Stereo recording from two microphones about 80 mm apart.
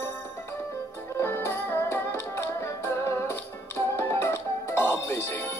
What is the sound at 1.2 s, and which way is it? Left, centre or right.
Music, left.